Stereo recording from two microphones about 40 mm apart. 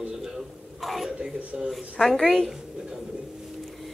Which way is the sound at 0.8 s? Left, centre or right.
Centre.